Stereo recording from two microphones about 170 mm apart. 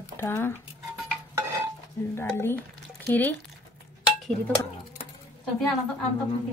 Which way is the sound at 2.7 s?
10° left (ahead or behind).